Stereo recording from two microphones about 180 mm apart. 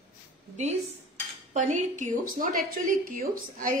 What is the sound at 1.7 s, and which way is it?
A woman's voice, 45° right (ahead or behind).